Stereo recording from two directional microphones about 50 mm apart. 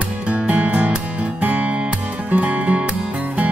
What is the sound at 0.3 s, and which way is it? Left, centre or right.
Music, right.